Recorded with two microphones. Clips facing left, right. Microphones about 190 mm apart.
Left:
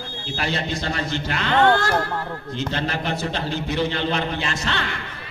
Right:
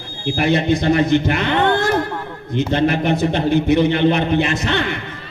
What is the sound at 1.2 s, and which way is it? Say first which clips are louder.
Speech: right 7 dB; 55° right (ahead or behind).